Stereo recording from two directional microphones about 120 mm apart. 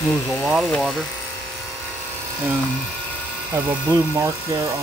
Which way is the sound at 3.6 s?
20° right (ahead or behind).